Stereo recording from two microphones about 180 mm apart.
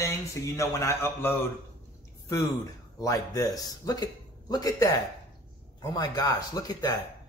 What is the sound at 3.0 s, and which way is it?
A man's voice, 20° left (ahead or behind).